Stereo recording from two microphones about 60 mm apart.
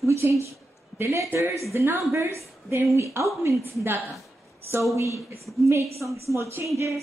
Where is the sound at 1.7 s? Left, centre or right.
Right.